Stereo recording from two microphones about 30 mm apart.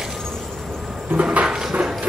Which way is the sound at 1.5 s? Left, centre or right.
Right.